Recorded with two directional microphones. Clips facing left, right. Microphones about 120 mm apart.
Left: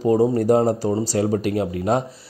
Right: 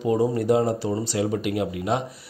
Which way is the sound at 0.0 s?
35° left (ahead or behind).